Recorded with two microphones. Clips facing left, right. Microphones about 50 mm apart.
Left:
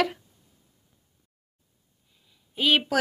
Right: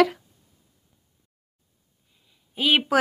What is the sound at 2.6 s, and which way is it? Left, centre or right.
Speech, centre.